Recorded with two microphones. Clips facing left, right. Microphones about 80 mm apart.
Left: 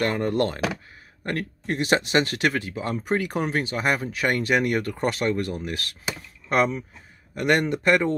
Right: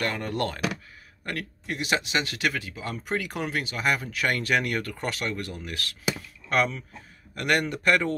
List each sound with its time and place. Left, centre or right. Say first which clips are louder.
0.0 s speech: left 5 dB; left